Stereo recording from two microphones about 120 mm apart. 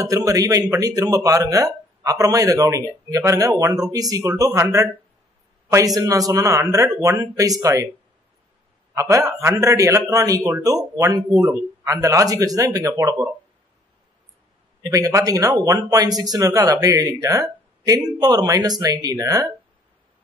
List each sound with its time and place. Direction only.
0.0 s speech: 30° right (ahead or behind)
5.9 s speech: 30° right (ahead or behind)
8.9 s a man's voice: 25° right (ahead or behind)
14.8 s speech: 30° right (ahead or behind)